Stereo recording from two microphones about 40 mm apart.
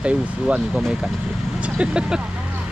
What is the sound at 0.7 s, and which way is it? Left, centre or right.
Speech, centre.